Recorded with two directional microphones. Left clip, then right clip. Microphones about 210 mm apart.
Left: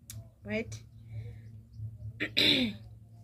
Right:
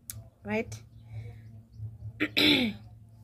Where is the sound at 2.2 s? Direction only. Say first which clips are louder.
Right 2 dB; 50° right (ahead or behind).